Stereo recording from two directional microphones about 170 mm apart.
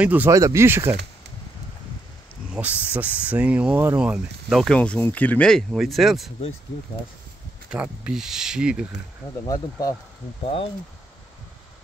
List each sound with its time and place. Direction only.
0.0 s speech: 10° right (ahead or behind)
2.5 s speech: 10° right (ahead or behind)
7.7 s speech: 5° right (ahead or behind)
9.5 s speech: 20° left (ahead or behind)
10.4 s speech: 35° left (ahead or behind)